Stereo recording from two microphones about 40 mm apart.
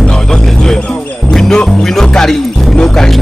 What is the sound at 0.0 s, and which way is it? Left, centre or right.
Music, centre.